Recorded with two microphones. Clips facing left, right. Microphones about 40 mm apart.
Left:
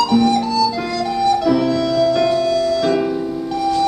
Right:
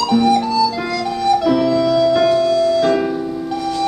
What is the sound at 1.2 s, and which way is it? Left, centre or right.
Music, centre.